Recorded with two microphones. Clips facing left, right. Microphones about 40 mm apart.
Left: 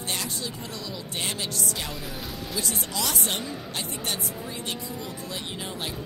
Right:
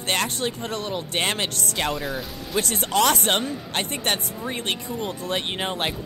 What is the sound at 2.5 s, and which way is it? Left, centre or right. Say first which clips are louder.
Speech: right 10 dB; right.